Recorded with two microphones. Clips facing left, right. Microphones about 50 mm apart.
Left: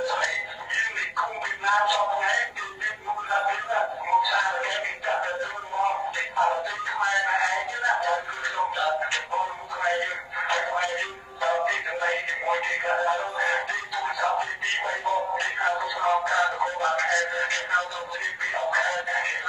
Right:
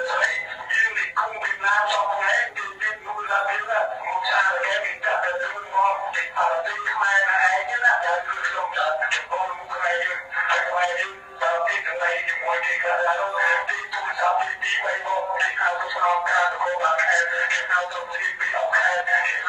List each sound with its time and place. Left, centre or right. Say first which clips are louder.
0.0 s music: right 4 dB; right
0.7 s a sound: right 5 dB; right
2.1 s music: right 3 dB; right
4.6 s music: right 4 dB; centre
7.0 s a sound: right 5 dB; right
9.0 s music: right 3 dB; right
19.0 s synthetic singing: right 6 dB; right